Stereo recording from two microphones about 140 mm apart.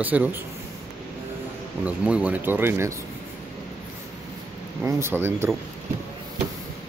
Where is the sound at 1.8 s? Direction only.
10° right (ahead or behind).